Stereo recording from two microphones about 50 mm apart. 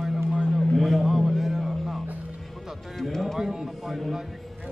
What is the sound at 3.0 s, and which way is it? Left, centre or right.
Speech, centre.